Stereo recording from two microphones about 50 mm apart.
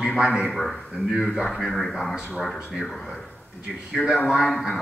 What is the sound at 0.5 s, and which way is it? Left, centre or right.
A man's voice, centre.